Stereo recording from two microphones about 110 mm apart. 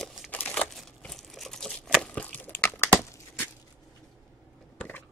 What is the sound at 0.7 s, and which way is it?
Crumpling, 5° left (ahead or behind).